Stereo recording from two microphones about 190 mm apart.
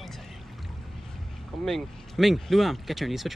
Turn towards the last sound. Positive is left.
turn(degrees=0)  # may be behind; listen again after turning